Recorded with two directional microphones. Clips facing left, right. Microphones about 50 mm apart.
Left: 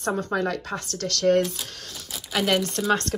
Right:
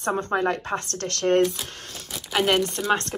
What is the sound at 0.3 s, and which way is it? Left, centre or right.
Speech, right.